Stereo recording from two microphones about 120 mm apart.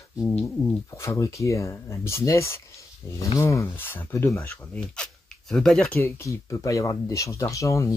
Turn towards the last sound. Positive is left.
turn(degrees=25)  # may be behind; listen again after turning